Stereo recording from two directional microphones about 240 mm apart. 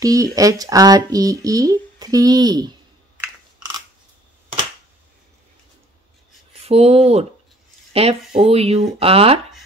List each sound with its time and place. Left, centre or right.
0.0 s speech: centre
6.7 s speech: right